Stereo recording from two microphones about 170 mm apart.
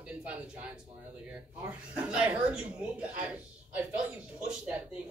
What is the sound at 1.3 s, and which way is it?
Speech, 5° right (ahead or behind).